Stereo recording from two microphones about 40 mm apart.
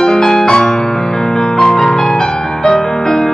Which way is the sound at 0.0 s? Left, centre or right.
Centre.